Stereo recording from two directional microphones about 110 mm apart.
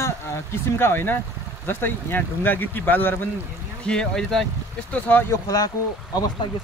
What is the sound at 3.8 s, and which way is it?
Speech, 5° left (ahead or behind).